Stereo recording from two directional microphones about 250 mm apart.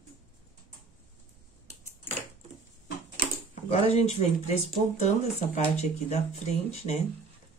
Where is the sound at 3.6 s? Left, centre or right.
Left.